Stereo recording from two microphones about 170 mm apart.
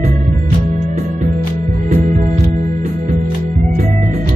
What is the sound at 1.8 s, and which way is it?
Music, 45° right (ahead or behind).